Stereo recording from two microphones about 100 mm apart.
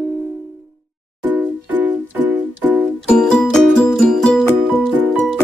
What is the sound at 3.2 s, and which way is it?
Music, 10° left (ahead or behind).